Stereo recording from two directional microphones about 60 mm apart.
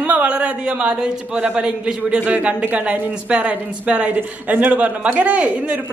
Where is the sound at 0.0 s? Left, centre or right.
Right.